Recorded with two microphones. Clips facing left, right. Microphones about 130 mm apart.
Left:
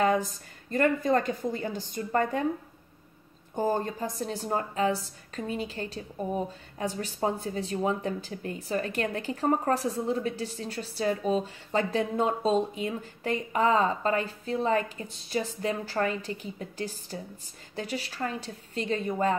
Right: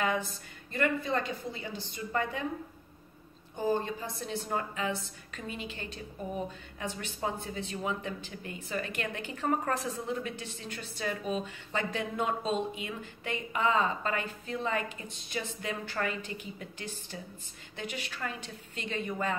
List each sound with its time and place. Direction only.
0.0 s a woman's voice: 40° left (ahead or behind)
3.5 s a woman's voice: 45° left (ahead or behind)